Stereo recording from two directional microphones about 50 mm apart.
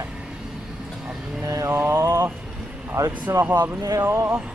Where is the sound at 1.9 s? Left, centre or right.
Right.